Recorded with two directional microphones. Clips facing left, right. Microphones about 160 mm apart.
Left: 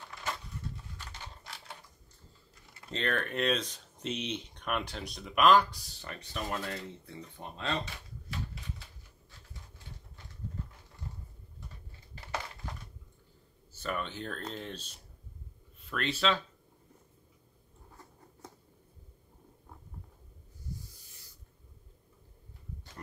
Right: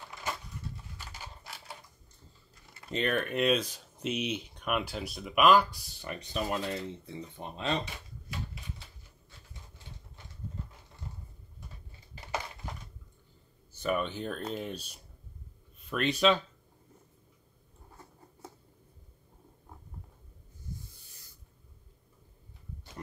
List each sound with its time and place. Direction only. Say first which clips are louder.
0.9 s a sound: right 1 dB; 5° right (ahead or behind)
2.9 s speech: right 3 dB; 10° right (ahead or behind)
13.8 s speech: right 5 dB; 15° right (ahead or behind)